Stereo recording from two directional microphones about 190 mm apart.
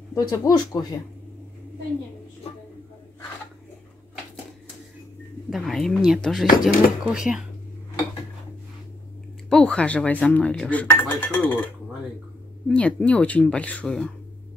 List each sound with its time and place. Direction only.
0.1 s speech: 20° left (ahead or behind)
5.5 s speech: centre (ahead or behind)
9.5 s speech: 5° left (ahead or behind)
12.6 s speech: 5° left (ahead or behind)